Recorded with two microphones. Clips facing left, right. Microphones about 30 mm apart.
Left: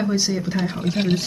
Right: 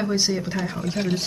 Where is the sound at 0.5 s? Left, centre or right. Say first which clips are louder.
Left 3 dB; left.